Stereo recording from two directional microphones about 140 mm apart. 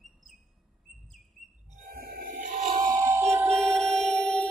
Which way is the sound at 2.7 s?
30° right (ahead or behind).